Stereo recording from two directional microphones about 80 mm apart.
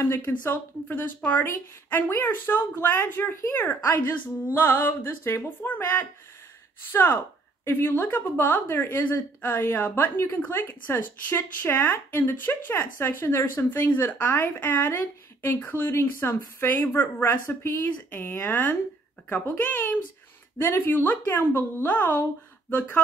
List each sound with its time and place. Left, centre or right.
0.0 s speech: left